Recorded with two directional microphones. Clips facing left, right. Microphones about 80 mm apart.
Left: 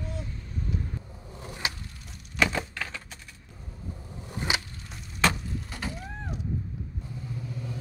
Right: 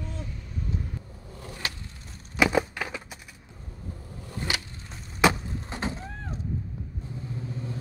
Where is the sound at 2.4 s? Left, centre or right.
Centre.